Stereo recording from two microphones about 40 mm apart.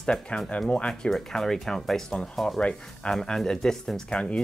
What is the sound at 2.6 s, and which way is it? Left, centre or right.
Speech, left.